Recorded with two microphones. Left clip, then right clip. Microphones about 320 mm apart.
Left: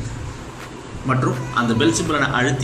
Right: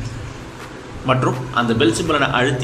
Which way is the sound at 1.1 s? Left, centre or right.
Centre.